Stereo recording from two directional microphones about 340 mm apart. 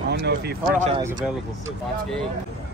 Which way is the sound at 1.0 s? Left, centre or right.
Centre.